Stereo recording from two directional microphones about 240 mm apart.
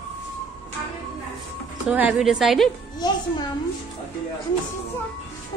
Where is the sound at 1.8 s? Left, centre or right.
Centre.